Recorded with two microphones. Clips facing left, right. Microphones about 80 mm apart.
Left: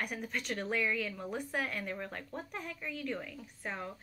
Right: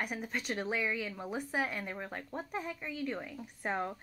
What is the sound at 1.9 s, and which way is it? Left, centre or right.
Speech, centre.